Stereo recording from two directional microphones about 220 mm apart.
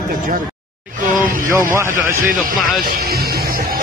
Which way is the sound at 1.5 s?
15° right (ahead or behind).